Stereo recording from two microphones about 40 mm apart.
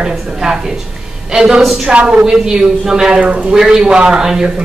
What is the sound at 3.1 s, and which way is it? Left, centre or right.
Speech, right.